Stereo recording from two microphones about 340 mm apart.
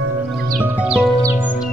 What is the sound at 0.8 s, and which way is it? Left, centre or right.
Music, centre.